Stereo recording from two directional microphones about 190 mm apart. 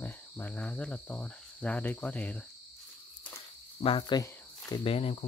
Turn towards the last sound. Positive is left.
turn(degrees=30)  # may be behind; listen again after turning